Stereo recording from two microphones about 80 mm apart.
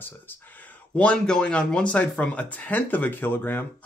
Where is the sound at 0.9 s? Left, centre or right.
Centre.